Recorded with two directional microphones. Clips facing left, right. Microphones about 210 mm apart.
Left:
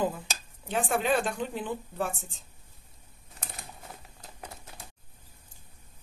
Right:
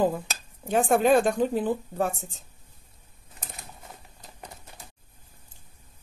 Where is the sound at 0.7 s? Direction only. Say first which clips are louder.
Right 7 dB; 50° right (ahead or behind).